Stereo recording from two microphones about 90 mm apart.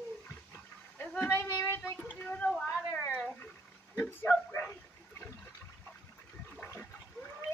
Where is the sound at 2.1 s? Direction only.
15° left (ahead or behind).